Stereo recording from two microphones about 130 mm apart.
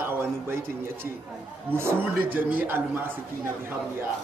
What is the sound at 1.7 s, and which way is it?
Speech, 15° right (ahead or behind).